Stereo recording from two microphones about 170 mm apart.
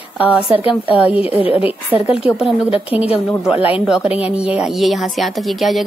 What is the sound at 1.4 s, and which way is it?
Speech, 35° left (ahead or behind).